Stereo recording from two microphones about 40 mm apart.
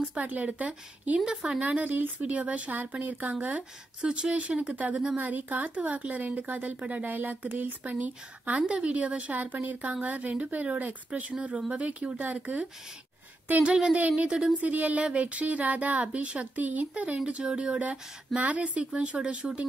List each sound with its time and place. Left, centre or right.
0.0 s speech: right
1.2 s speech: right
1.6 s speech: right
2.7 s speech: right
7.1 s a woman's voice: right
8.6 s speech: right
13.6 s speech: right
13.9 s speech: right
14.2 s speech: right
14.6 s speech: right
17.4 s speech: right
17.6 s speech: right